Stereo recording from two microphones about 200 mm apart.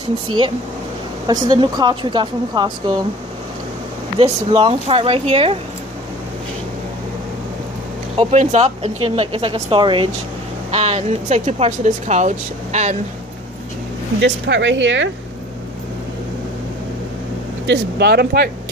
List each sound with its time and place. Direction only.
1.2 s speech: 20° right (ahead or behind)
4.2 s speech: 30° right (ahead or behind)
8.3 s speech: 35° right (ahead or behind)
14.2 s speech: 60° right (ahead or behind)
17.6 s speech: 55° right (ahead or behind)